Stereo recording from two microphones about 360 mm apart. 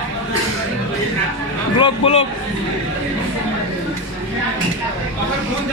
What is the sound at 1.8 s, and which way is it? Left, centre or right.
Speech, centre.